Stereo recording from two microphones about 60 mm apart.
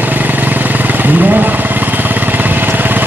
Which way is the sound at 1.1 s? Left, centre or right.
Right.